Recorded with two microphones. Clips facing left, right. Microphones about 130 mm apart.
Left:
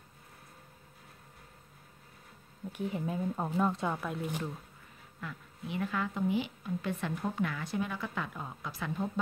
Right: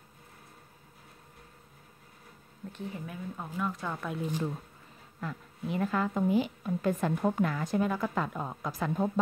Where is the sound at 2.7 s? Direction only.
20° left (ahead or behind).